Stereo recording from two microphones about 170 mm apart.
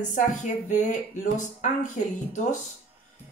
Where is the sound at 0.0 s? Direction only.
45° left (ahead or behind).